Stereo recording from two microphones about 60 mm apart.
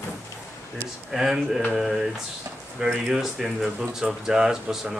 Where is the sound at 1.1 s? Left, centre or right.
Centre.